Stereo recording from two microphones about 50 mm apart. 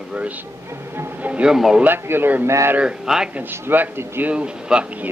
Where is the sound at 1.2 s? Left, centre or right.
Right.